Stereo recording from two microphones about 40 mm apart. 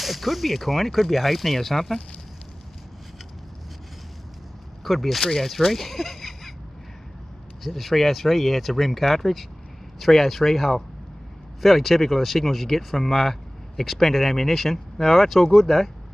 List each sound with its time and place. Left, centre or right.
0.0 s speech: centre
4.8 s speech: centre
7.6 s speech: centre